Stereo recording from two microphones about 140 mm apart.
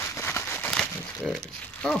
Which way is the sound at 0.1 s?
15° left (ahead or behind).